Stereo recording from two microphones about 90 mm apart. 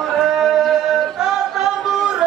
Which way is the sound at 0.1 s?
5° right (ahead or behind).